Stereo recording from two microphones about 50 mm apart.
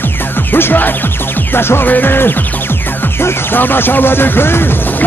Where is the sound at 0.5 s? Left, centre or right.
Left.